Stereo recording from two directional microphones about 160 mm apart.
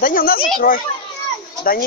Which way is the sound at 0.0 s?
60° left (ahead or behind).